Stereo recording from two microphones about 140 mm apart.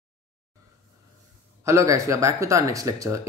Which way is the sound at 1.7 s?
20° right (ahead or behind).